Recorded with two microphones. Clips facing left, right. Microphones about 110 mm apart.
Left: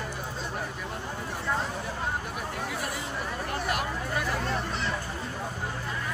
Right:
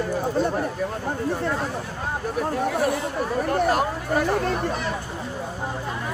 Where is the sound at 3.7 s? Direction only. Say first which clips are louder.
Right 8 dB; 35° right (ahead or behind).